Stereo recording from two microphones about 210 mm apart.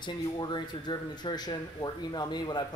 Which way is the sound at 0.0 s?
20° left (ahead or behind).